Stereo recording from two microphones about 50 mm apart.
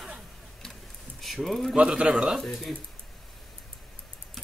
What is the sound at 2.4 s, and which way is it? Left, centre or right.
Speech, centre.